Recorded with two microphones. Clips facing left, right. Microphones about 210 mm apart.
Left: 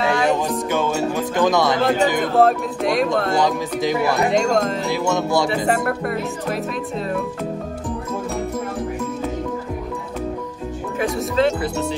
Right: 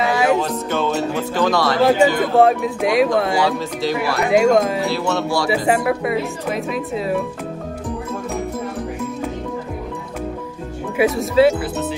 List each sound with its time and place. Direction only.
0.0 s music: 5° right (ahead or behind)
0.4 s music: 10° left (ahead or behind)
1.9 s speech: centre (ahead or behind)
3.8 s speech: 20° left (ahead or behind)
4.3 s speech: 5° right (ahead or behind)
4.9 s speech: 15° left (ahead or behind)
5.5 s speech: 5° right (ahead or behind)
11.0 s speech: 5° right (ahead or behind)